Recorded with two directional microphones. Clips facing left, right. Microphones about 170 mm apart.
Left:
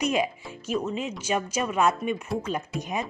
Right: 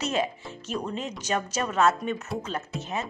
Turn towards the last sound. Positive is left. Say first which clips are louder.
# left 2 dB
turn(degrees=15)  # may be behind; listen again after turning